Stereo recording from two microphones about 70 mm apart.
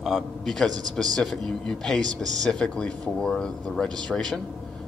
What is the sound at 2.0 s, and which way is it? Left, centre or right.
Speech, right.